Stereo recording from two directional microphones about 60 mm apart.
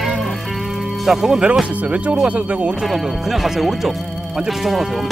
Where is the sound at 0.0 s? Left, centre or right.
Centre.